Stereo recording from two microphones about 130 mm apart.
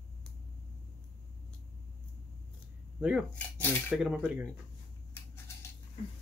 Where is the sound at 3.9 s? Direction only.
5° right (ahead or behind).